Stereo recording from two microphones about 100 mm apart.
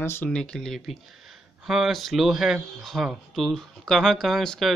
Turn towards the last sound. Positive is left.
turn(degrees=5)  # may be behind; listen again after turning